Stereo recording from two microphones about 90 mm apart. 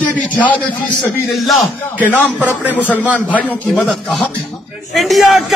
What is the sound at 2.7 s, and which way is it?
Speech, 20° left (ahead or behind).